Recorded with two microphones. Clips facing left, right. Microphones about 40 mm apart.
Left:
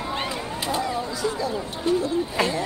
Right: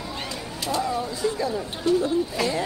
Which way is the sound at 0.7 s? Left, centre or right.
Left.